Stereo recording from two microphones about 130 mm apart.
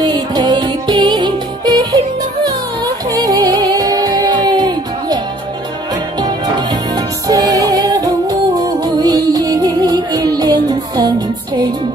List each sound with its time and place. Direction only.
0.0 s music: 30° right (ahead or behind)
3.1 s music: 30° right (ahead or behind)
7.2 s music: 30° right (ahead or behind)